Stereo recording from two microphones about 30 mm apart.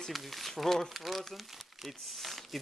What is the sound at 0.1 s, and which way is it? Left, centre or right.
Speech, centre.